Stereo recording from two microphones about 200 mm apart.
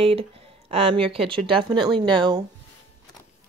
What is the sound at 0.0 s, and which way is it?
Speech, 30° right (ahead or behind).